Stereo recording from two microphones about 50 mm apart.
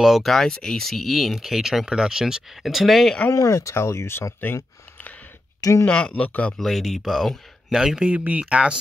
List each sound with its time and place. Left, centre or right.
0.0 s speech: centre
0.5 s speech: centre
0.8 s speech: centre
3.3 s speech: left
5.9 s speech: left
6.6 s speech: centre
8.3 s speech: right